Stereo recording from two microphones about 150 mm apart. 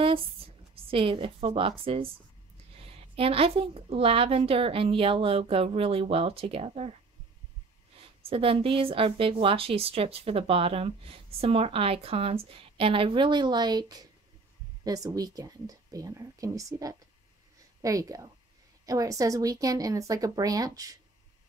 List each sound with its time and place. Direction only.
0.8 s a woman's voice: 35° right (ahead or behind)
8.2 s a woman's voice: 40° right (ahead or behind)